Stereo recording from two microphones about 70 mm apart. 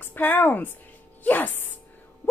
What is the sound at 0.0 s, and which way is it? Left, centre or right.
A woman's voice, left.